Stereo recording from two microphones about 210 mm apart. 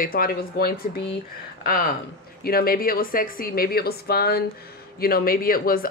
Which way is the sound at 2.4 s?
45° left (ahead or behind).